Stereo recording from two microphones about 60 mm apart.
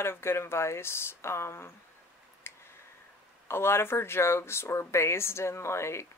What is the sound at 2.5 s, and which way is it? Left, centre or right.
Clicking, left.